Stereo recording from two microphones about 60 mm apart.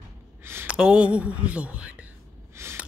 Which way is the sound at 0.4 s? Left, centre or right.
Right.